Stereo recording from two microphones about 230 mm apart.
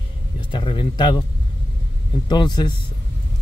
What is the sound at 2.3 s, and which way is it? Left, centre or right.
Speech, centre.